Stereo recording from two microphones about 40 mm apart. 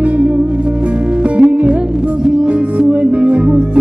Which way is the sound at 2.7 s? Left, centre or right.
Right.